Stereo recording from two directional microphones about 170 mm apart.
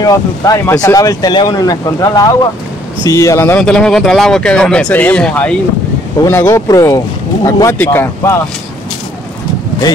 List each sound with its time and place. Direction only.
0.0 s speech: 20° left (ahead or behind)